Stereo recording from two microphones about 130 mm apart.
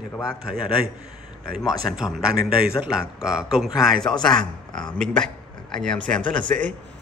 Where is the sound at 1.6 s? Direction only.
Centre (ahead or behind).